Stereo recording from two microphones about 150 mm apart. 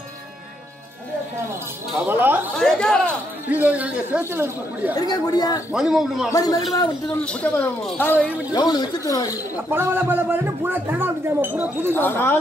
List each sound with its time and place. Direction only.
2.0 s speech: 10° right (ahead or behind)
2.5 s a man's voice: 5° left (ahead or behind)
3.4 s speech: 10° right (ahead or behind)
4.9 s speech: 25° left (ahead or behind)
5.7 s a man's voice: 5° right (ahead or behind)
6.3 s speech: 25° left (ahead or behind)
7.4 s speech: 10° left (ahead or behind)
8.5 s speech: 25° left (ahead or behind)
9.7 s speech: 15° right (ahead or behind)
11.9 s speech: 15° left (ahead or behind)